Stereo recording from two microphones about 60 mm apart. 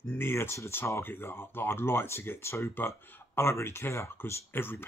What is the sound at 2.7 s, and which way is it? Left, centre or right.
Speech, left.